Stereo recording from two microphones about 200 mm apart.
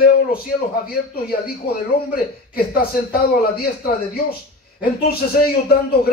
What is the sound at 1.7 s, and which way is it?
A man's voice, 50° left (ahead or behind).